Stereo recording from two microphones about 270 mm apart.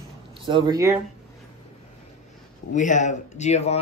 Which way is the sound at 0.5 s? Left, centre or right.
Centre.